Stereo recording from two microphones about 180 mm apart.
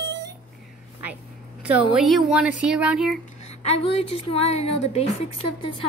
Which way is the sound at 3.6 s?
35° left (ahead or behind).